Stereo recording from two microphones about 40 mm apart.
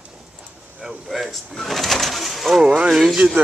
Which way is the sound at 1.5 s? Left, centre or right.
Centre.